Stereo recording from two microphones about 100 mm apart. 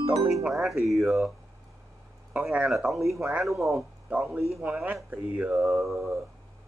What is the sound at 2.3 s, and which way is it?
Speech, 10° right (ahead or behind).